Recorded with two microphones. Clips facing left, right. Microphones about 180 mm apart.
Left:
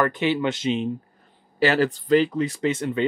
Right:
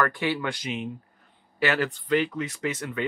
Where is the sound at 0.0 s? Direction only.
20° left (ahead or behind).